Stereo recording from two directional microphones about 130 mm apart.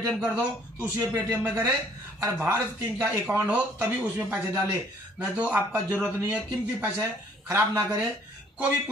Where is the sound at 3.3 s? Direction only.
10° right (ahead or behind).